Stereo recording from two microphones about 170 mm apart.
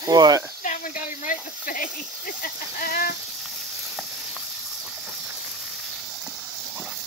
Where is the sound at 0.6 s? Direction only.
50° left (ahead or behind).